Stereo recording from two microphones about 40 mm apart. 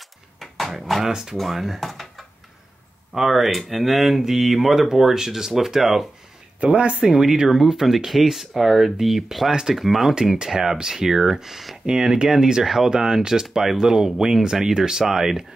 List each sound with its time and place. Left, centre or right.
0.4 s a sound: centre
1.0 s speech: centre
1.9 s a sound: centre
3.1 s speech: centre
6.6 s speech: right
7.0 s speech: centre
11.8 s speech: centre